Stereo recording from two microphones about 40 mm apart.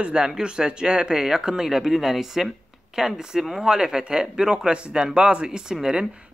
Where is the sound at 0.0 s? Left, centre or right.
Right.